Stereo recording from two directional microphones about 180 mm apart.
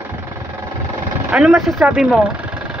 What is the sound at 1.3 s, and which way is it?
Speech, 5° right (ahead or behind).